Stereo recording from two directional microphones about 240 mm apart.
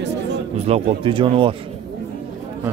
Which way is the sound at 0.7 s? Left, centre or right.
Right.